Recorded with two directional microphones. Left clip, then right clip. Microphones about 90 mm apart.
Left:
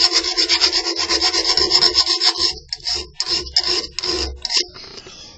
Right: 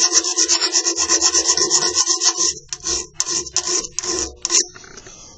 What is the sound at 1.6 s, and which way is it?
Rub, 20° left (ahead or behind).